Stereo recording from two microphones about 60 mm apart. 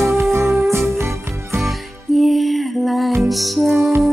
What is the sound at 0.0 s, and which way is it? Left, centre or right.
Music, right.